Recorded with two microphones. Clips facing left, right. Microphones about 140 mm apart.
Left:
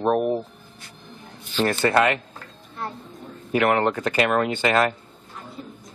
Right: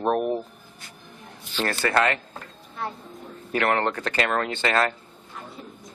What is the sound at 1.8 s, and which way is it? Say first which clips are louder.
Speech: left 2 dB; 20° left (ahead or behind).